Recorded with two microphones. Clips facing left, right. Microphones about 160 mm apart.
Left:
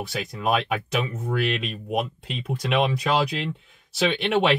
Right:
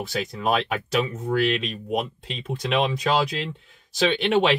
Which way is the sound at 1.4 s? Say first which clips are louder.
Right 3 dB; 5° left (ahead or behind).